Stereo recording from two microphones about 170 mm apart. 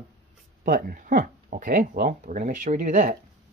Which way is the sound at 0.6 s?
60° right (ahead or behind).